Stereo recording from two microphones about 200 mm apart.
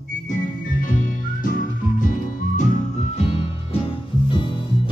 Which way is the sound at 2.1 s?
40° left (ahead or behind).